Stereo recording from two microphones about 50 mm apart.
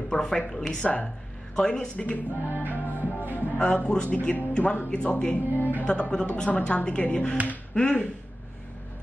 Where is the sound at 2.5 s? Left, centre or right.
Right.